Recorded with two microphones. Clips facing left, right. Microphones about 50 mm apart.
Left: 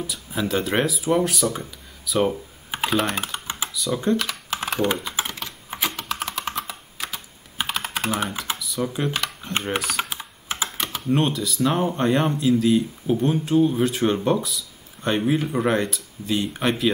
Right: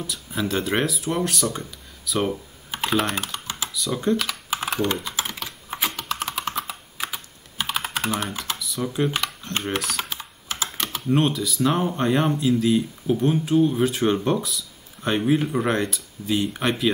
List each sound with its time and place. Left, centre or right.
0.0 s speech: centre
2.2 s computer keyboard: centre
2.9 s speech: centre
3.4 s computer keyboard: centre
3.7 s speech: centre
5.3 s computer keyboard: centre
8.1 s speech: centre